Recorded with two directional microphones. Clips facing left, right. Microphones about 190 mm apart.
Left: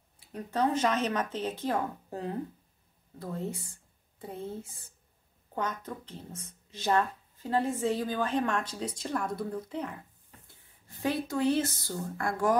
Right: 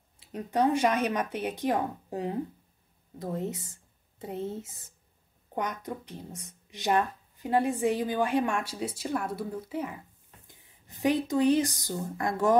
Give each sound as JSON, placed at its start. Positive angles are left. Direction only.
{"t": 0.2, "sound": "a woman's voice", "side_deg": -20}